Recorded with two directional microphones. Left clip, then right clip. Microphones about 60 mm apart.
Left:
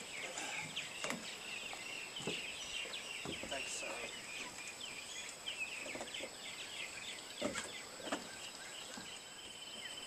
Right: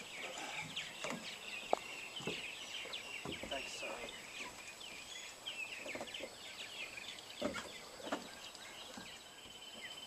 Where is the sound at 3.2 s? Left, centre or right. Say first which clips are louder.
Left 1 dB; centre.